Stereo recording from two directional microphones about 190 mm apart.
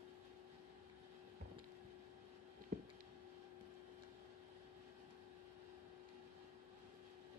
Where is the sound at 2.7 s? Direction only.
50° right (ahead or behind).